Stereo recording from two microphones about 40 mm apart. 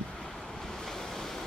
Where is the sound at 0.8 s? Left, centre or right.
Centre.